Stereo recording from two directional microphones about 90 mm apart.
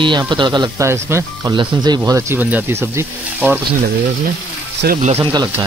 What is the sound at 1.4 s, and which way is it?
Speech, 50° right (ahead or behind).